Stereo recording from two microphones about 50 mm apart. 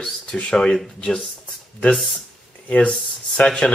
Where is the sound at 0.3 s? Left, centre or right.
Centre.